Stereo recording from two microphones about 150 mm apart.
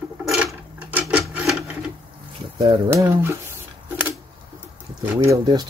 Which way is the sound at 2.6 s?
25° right (ahead or behind).